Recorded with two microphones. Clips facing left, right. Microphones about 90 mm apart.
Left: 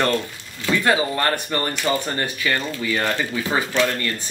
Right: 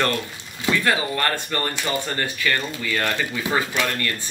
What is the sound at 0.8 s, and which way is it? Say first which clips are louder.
A man's voice: left 4 dB; 20° left (ahead or behind).